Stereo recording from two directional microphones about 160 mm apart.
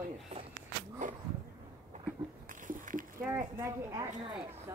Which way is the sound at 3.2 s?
20° right (ahead or behind).